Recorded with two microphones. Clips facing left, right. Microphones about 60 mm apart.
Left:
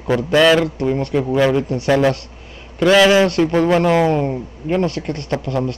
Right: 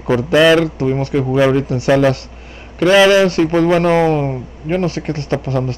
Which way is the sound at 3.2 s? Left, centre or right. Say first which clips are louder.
Right 2 dB; centre.